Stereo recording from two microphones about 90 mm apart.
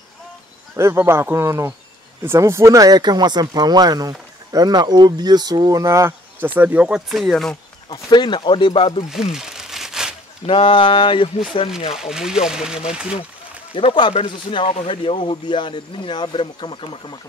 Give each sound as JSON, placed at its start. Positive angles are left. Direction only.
{"t": 0.7, "sound": "speech", "side_deg": -30}
{"t": 6.4, "sound": "speech", "side_deg": -20}
{"t": 7.1, "sound": "speech", "side_deg": 0}
{"t": 7.9, "sound": "speech", "side_deg": 55}
{"t": 9.1, "sound": "crumpling", "side_deg": -5}
{"t": 10.5, "sound": "speech", "side_deg": 75}
{"t": 11.9, "sound": "speech", "side_deg": -5}
{"t": 13.7, "sound": "speech", "side_deg": 75}